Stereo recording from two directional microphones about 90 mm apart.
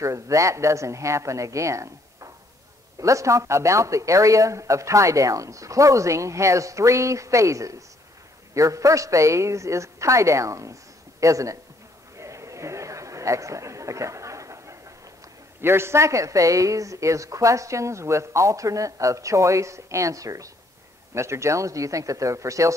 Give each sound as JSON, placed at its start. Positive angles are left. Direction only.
{"t": 0.0, "sound": "speech", "side_deg": -35}
{"t": 12.2, "sound": "a sound", "side_deg": -35}
{"t": 15.6, "sound": "speech", "side_deg": -30}